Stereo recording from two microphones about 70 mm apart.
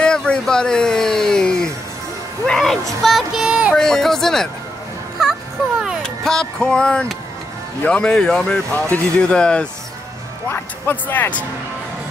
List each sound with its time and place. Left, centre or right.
0.0 s a sound: centre
2.4 s speech: centre
3.4 s music: centre
3.7 s speech: centre
6.0 s speech: centre
8.7 s speech: left
10.5 s speech: left